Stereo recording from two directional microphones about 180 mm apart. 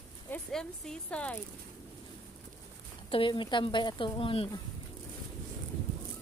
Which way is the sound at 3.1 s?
30° left (ahead or behind).